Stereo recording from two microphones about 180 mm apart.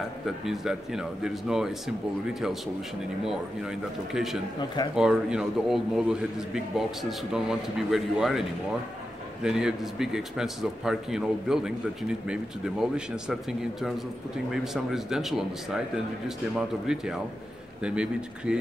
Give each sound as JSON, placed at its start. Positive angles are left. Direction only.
{"t": 0.5, "sound": "a man's voice", "side_deg": -5}